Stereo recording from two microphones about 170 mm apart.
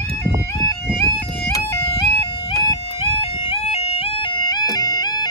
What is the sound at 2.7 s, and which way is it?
Music, 35° left (ahead or behind).